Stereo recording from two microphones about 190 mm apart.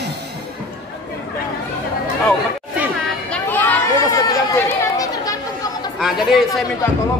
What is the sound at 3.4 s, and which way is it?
Chatter, 10° left (ahead or behind).